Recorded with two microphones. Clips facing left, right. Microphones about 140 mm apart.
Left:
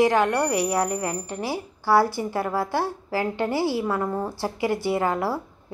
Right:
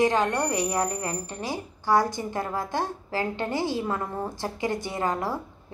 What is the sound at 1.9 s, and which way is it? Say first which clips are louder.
Speech: left 3 dB; 15° right (ahead or behind).